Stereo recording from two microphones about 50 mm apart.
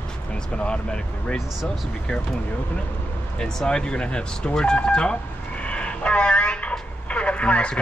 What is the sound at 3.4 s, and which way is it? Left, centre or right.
Speech, centre.